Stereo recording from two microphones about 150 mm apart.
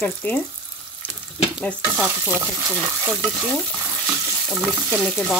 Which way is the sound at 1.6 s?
5° left (ahead or behind).